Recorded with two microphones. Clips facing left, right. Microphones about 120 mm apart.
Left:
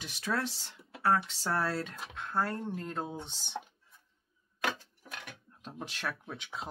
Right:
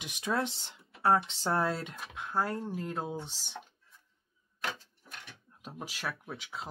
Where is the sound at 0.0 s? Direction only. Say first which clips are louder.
Right 2 dB; 20° right (ahead or behind); by 3.6 s centre (ahead or behind).